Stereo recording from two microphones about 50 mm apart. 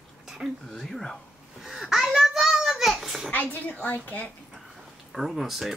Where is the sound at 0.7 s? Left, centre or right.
Centre.